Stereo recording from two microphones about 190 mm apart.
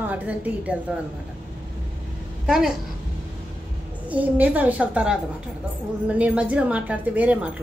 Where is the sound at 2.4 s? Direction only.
5° right (ahead or behind).